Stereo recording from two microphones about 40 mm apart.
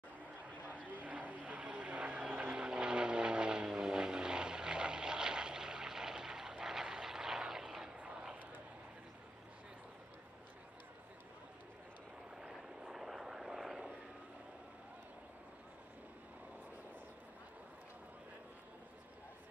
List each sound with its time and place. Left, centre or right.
0.9 s vehicle: right
2.5 s vehicle: right
7.9 s vehicle: right
12.4 s vehicle: centre